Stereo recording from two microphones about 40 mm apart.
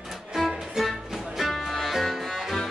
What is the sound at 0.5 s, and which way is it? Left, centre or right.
Music, centre.